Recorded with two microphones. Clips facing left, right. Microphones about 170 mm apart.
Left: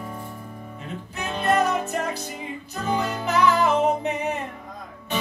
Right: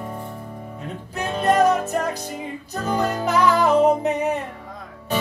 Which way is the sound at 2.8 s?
40° right (ahead or behind).